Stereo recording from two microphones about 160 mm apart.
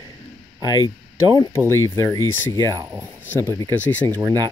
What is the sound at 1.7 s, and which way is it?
Speech, 20° left (ahead or behind).